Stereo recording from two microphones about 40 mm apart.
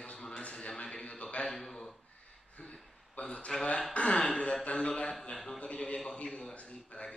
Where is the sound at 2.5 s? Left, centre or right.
Left.